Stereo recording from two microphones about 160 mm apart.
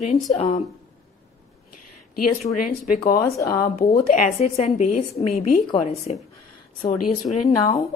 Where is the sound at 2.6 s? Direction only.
70° left (ahead or behind).